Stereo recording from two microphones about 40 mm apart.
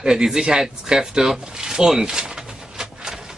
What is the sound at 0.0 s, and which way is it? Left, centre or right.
Speech, centre.